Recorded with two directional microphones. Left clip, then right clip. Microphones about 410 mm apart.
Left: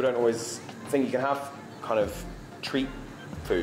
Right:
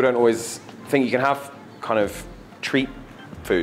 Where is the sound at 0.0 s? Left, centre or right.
Right.